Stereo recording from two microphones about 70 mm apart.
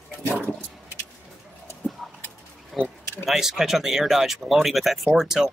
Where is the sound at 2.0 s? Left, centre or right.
Centre.